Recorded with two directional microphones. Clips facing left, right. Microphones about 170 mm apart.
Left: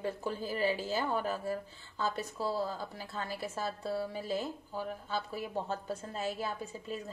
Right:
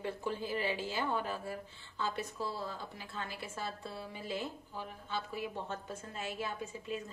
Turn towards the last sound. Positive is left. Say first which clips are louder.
# left 1 dB
turn(degrees=35)  # may be behind; listen again after turning